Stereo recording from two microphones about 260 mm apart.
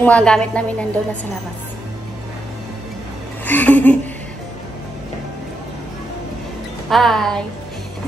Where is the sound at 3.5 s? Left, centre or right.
Centre.